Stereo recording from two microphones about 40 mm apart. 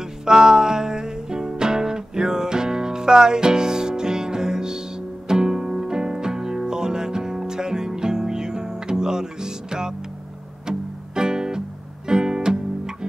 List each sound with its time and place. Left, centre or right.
0.2 s music: centre
12.1 s guitar: centre